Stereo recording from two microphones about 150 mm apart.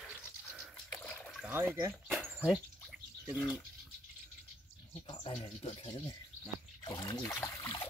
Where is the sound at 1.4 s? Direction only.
15° right (ahead or behind).